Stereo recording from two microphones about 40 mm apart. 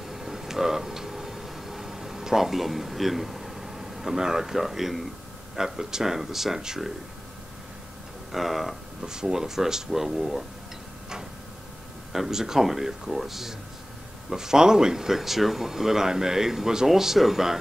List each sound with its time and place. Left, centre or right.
0.0 s a sound: centre
5.6 s speech: centre
8.3 s speech: centre
9.0 s speech: centre
12.1 s speech: centre